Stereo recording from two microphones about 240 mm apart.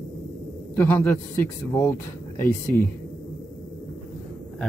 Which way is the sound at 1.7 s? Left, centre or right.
Centre.